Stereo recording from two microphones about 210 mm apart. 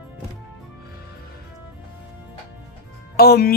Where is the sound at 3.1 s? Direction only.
50° left (ahead or behind).